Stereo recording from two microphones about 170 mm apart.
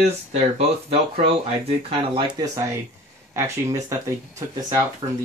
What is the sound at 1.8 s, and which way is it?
Speech, 30° right (ahead or behind).